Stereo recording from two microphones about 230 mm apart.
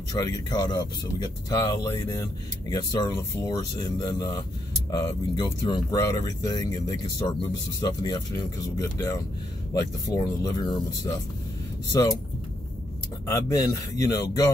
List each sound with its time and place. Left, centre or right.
0.1 s speech: centre
13.3 s speech: centre